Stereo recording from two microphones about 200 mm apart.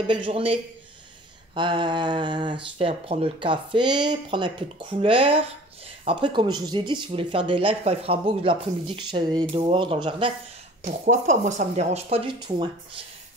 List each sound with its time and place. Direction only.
0.0 s speech: 25° right (ahead or behind)
10.8 s speech: 35° right (ahead or behind)
12.4 s speech: 25° right (ahead or behind)